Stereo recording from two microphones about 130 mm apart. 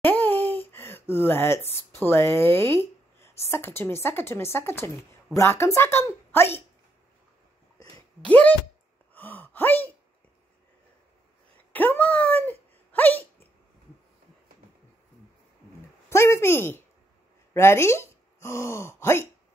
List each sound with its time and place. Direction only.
0.0 s speech: 15° left (ahead or behind)
8.3 s speech: 10° left (ahead or behind)
9.1 s gasp: 15° left (ahead or behind)
11.7 s speech: 15° left (ahead or behind)
16.1 s speech: 20° left (ahead or behind)